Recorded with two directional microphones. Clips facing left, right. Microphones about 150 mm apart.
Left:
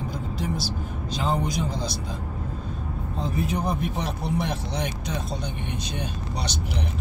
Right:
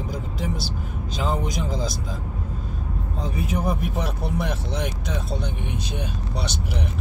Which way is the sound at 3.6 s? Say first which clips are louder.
Right 1 dB; 5° right (ahead or behind).